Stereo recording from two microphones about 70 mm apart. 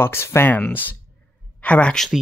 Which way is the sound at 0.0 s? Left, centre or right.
Left.